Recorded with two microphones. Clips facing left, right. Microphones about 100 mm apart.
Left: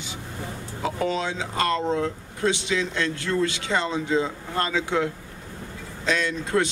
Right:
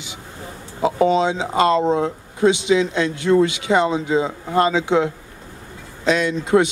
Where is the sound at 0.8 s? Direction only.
20° right (ahead or behind).